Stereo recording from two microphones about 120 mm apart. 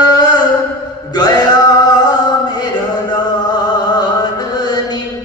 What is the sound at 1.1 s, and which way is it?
Male singing, 35° left (ahead or behind).